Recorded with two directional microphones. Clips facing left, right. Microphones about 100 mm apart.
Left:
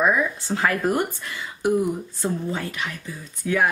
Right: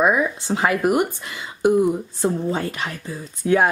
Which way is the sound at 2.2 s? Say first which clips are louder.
Right 5 dB; 35° right (ahead or behind).